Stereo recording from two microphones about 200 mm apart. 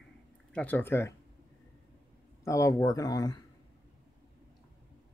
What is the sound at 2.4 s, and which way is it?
Speech, 15° left (ahead or behind).